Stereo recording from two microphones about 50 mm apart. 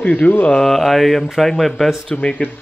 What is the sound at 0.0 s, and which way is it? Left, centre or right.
Speech, left.